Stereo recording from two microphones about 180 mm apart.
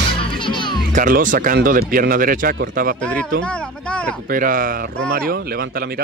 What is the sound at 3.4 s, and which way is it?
Speech, 5° left (ahead or behind).